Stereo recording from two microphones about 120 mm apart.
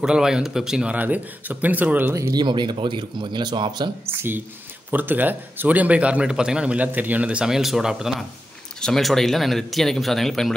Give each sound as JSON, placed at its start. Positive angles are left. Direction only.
{"t": 0.0, "sound": "a man's voice", "side_deg": -5}
{"t": 2.3, "sound": "speech", "side_deg": -40}
{"t": 4.0, "sound": "a man's voice", "side_deg": -20}